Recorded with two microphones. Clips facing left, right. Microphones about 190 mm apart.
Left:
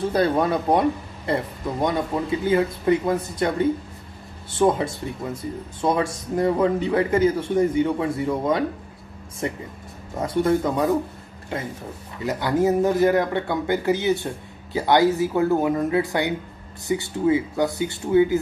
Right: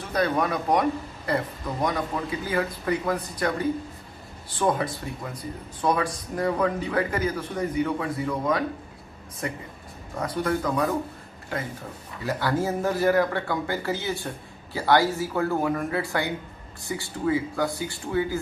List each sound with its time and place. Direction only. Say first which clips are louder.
0.0 s speech: left 5 dB; 30° left (ahead or behind)